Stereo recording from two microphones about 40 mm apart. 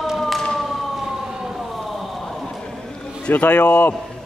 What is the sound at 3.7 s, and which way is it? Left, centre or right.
Speech, left.